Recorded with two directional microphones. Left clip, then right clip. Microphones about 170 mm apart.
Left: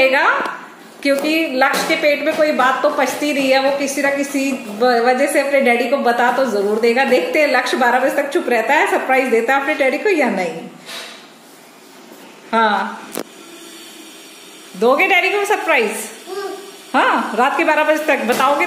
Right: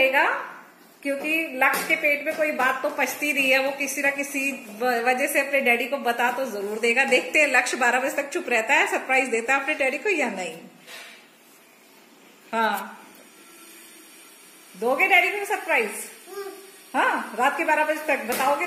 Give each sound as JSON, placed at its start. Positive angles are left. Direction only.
{"t": 0.0, "sound": "a sound", "side_deg": 5}
{"t": 1.6, "sound": "a woman's voice", "side_deg": 0}
{"t": 12.4, "sound": "speech", "side_deg": 0}
{"t": 14.8, "sound": "a woman's voice", "side_deg": 0}
{"t": 16.9, "sound": "a woman's voice", "side_deg": 0}